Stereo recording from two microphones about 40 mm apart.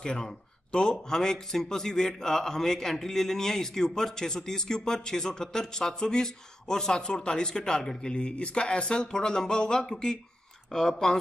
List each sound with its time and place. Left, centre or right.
0.0 s a man's voice: left